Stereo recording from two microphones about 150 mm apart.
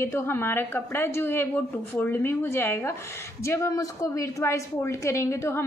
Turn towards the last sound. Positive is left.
turn(degrees=15)  # may be behind; listen again after turning